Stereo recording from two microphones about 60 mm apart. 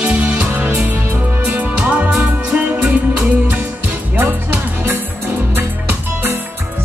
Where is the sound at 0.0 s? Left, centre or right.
Centre.